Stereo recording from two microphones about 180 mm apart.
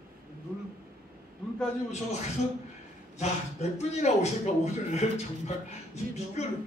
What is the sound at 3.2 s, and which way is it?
Speech, 40° left (ahead or behind).